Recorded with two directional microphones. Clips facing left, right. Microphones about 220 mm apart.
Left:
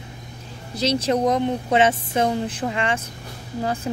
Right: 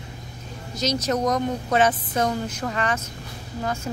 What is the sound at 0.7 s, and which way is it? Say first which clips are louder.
Speech: left 3 dB; 30° left (ahead or behind).